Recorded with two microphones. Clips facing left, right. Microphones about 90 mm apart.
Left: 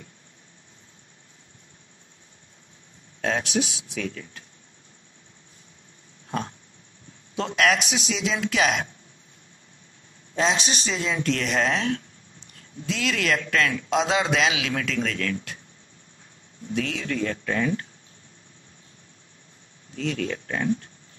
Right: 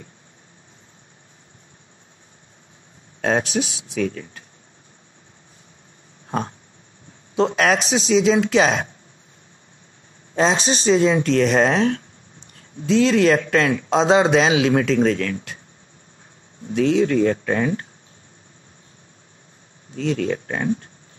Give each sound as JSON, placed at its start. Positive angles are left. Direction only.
{"t": 3.2, "sound": "a man's voice", "side_deg": -35}
{"t": 6.2, "sound": "a sound", "side_deg": -30}
{"t": 7.3, "sound": "a man's voice", "side_deg": -30}
{"t": 10.3, "sound": "a man's voice", "side_deg": -35}
{"t": 16.6, "sound": "speech", "side_deg": -30}
{"t": 20.0, "sound": "a man's voice", "side_deg": -30}